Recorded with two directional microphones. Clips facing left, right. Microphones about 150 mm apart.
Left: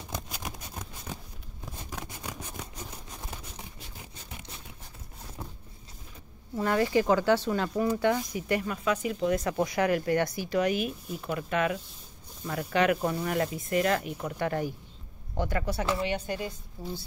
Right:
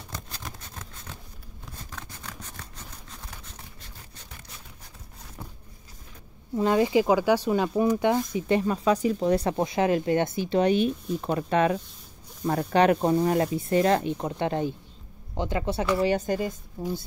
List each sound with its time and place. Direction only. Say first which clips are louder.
0.1 s patter: left 2 dB; 10° left (ahead or behind)
1.9 s a sound: left 4 dB; 15° left (ahead or behind)
5.4 s vehicle: left 1 dB; 10° left (ahead or behind)
6.5 s speech: right 4 dB; 20° right (ahead or behind)
16.0 s a woman's voice: right 7 dB; 40° right (ahead or behind)